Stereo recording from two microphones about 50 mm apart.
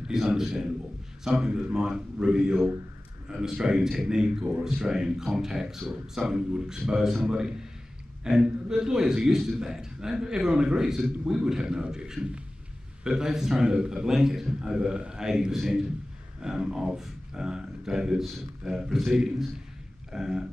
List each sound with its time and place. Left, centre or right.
0.4 s a man's voice: centre
8.2 s a man's voice: centre
20.1 s speech: centre